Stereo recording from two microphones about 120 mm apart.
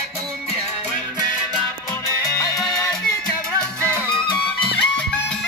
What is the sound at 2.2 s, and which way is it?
Music, 25° left (ahead or behind).